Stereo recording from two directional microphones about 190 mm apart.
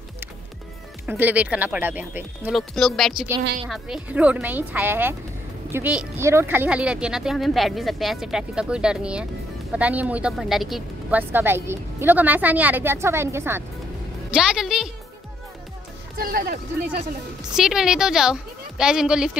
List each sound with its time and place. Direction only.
1.0 s speech: 10° right (ahead or behind)
16.2 s speech: 50° right (ahead or behind)
17.4 s speech: 5° right (ahead or behind)